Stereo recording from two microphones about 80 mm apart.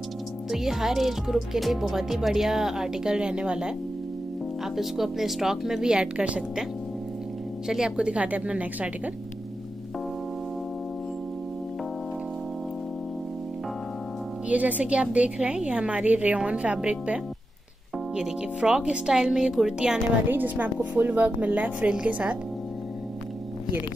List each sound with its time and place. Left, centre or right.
0.5 s speech: centre
4.7 s a woman's voice: centre
7.6 s a woman's voice: centre
14.5 s a woman's voice: centre
20.2 s a woman's voice: right